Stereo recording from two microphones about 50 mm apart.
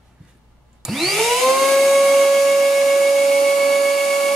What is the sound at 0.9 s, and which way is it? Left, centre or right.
Vacuum cleaner, centre.